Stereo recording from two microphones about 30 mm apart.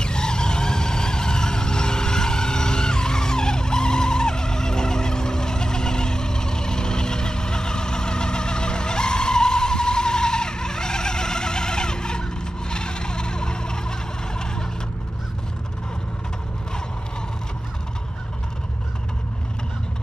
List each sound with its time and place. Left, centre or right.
0.0 s vehicle: left